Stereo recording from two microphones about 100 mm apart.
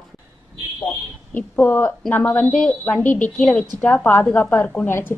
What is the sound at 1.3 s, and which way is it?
A woman's voice, 20° left (ahead or behind).